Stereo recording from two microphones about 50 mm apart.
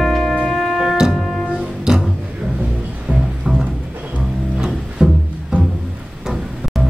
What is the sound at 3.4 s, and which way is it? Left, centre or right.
Music, centre.